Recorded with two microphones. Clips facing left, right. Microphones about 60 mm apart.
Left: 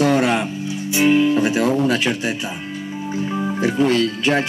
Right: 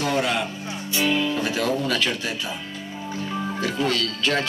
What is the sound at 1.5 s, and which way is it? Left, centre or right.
Speech, left.